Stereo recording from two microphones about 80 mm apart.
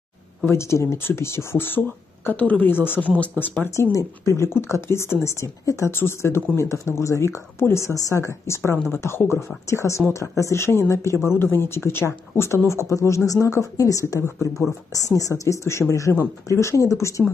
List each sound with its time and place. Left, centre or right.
0.5 s speech: left
3.7 s speech: left
14.2 s speech: left
15.1 s speech: left